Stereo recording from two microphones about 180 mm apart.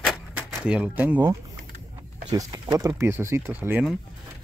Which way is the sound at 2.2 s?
20° right (ahead or behind).